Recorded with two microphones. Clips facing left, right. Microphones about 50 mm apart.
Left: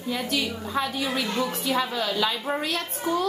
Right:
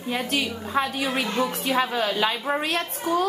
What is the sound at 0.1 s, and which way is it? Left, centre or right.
A woman's voice, right.